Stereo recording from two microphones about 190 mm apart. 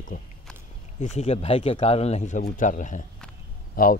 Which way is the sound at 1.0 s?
35° left (ahead or behind).